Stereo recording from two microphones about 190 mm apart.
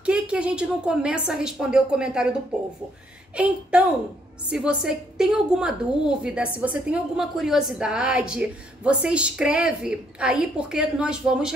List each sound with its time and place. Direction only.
0.0 s a woman's voice: 5° right (ahead or behind)
3.4 s a woman's voice: 5° right (ahead or behind)